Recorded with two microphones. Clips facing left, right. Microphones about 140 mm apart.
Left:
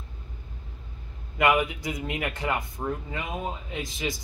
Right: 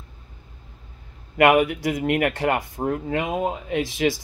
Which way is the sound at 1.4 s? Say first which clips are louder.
Right 7 dB; 60° right (ahead or behind).